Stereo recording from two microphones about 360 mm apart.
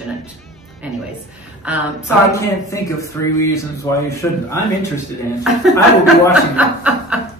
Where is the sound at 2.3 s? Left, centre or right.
Centre.